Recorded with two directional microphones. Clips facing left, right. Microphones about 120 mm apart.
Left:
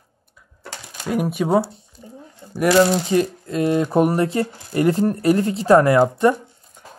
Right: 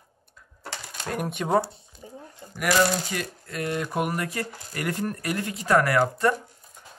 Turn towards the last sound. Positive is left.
turn(degrees=20)  # may be behind; listen again after turning